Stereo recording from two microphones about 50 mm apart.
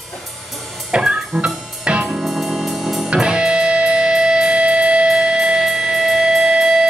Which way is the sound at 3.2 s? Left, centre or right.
Centre.